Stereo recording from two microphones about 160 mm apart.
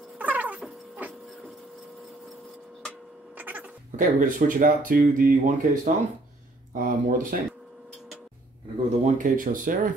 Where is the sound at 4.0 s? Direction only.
60° right (ahead or behind).